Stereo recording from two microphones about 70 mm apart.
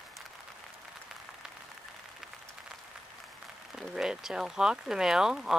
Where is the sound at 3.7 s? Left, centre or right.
Centre.